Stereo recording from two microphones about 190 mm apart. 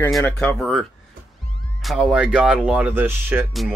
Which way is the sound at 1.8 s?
5° right (ahead or behind).